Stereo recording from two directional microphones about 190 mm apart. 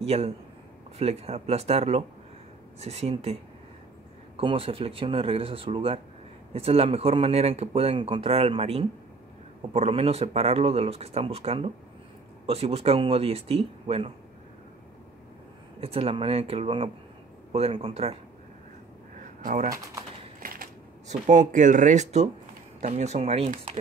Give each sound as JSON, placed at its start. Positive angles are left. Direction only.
{"t": 0.0, "sound": "a man's voice", "side_deg": -35}
{"t": 4.4, "sound": "speech", "side_deg": -30}
{"t": 15.8, "sound": "speech", "side_deg": -30}
{"t": 19.1, "sound": "a sound", "side_deg": -40}
{"t": 20.3, "sound": "typewriter", "side_deg": -50}
{"t": 21.1, "sound": "speech", "side_deg": -40}